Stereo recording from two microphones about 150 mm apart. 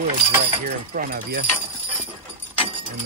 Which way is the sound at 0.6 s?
80° right.